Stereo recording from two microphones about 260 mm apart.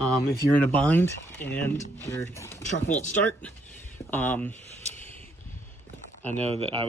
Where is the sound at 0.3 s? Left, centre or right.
Centre.